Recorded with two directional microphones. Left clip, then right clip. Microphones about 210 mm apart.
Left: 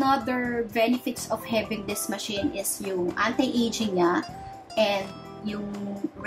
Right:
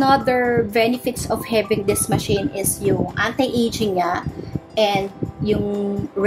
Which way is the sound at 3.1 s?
45° right (ahead or behind).